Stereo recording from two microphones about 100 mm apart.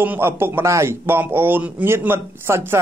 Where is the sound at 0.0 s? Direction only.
25° right (ahead or behind).